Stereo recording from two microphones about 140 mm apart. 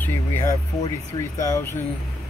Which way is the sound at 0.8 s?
25° left (ahead or behind).